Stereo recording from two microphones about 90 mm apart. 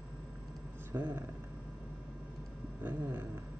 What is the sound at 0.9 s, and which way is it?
Speech, 30° right (ahead or behind).